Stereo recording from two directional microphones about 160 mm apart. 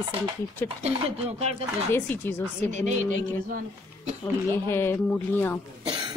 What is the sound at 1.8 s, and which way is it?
Speech, 15° left (ahead or behind).